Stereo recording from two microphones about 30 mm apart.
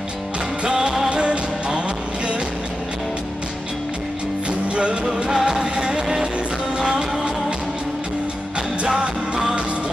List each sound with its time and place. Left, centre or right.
1.0 s music: right
4.5 s music: right
5.0 s music: centre
9.0 s music: right